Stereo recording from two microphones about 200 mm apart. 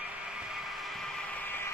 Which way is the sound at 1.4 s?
10° left (ahead or behind).